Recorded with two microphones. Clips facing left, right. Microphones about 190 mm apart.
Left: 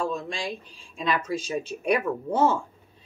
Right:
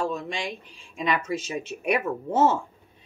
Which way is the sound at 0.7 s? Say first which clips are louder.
Right 1 dB; 20° right (ahead or behind).